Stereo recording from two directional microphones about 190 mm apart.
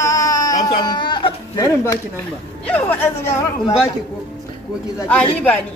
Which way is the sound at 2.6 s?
10° left (ahead or behind).